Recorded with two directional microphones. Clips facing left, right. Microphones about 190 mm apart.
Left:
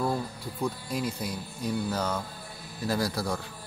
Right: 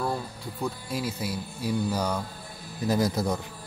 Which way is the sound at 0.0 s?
Centre (ahead or behind).